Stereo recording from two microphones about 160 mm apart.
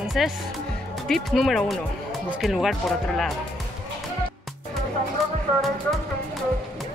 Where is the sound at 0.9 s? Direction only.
Centre (ahead or behind).